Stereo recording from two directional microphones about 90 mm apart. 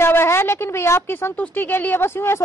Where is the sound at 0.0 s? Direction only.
30° left (ahead or behind).